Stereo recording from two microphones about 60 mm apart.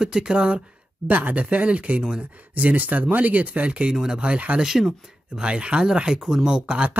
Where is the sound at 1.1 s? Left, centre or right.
Right.